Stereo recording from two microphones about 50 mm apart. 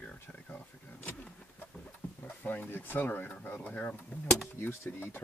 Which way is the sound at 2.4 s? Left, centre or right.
Left.